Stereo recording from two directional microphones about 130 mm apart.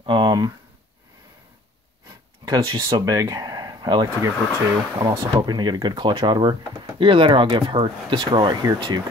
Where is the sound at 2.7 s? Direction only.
25° right (ahead or behind).